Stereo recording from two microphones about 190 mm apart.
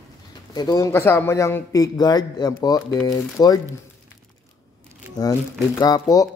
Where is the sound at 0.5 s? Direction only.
20° left (ahead or behind).